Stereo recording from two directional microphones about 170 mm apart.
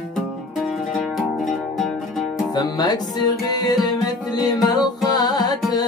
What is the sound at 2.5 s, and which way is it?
Music, 20° left (ahead or behind).